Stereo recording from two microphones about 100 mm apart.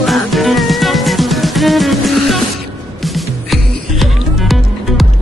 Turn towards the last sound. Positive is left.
turn(degrees=0)  # may be behind; listen again after turning